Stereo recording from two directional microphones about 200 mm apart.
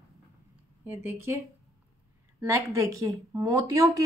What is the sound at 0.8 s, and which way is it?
Speech, 10° right (ahead or behind).